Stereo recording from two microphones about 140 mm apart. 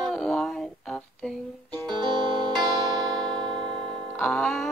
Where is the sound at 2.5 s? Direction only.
Centre (ahead or behind).